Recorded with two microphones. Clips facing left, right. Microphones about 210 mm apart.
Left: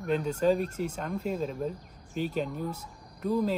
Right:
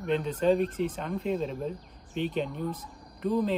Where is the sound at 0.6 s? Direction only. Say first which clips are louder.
Right 3 dB; 45° left (ahead or behind).